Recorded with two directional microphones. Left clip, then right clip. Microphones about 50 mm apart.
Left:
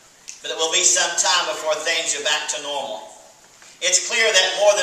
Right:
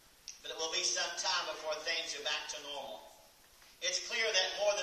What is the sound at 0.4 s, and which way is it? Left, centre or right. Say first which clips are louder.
A man's voice: left 16 dB; centre.